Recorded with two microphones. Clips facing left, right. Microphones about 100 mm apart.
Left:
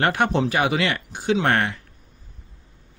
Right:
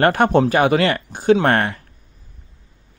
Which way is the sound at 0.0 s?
45° right (ahead or behind).